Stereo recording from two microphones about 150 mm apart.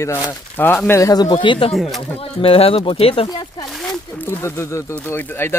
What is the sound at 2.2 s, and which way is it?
Speech, 40° left (ahead or behind).